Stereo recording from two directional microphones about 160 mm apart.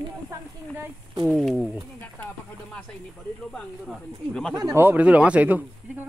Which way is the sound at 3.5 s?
5° left (ahead or behind).